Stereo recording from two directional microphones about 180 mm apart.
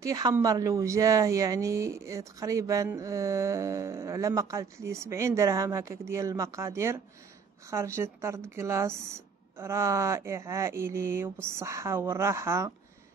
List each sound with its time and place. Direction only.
0.0 s a woman's voice: 20° right (ahead or behind)